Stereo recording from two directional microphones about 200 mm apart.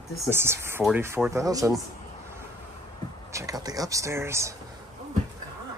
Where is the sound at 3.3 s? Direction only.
20° right (ahead or behind).